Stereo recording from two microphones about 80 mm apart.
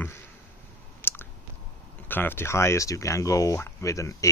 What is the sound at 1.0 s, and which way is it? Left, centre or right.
Chewing, left.